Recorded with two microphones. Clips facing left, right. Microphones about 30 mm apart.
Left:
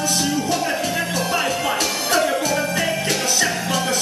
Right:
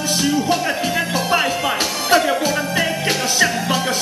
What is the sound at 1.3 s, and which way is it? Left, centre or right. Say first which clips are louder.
Music: right 4 dB; centre.